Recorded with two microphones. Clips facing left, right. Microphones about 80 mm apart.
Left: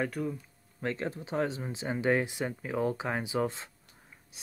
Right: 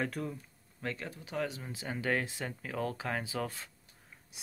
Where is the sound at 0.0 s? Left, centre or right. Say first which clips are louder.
Left 4 dB; centre.